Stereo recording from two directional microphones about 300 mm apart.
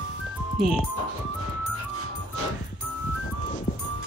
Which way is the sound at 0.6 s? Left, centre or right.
Centre.